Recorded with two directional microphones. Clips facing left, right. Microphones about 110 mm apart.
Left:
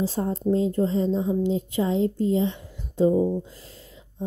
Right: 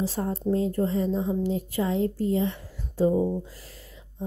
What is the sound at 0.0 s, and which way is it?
Speech, 30° left (ahead or behind).